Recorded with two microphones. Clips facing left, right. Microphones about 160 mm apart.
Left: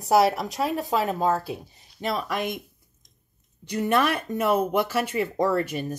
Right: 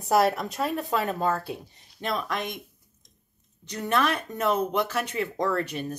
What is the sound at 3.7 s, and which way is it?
Speech, 10° left (ahead or behind).